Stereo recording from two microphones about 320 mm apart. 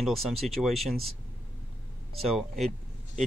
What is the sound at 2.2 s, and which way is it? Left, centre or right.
Speech, centre.